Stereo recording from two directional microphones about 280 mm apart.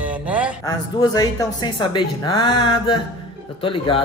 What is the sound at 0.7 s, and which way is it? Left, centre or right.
A woman's voice, centre.